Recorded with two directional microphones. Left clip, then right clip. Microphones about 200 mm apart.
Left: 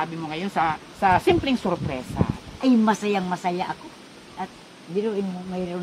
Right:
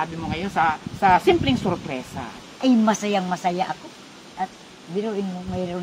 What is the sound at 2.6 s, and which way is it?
Speech, 10° right (ahead or behind).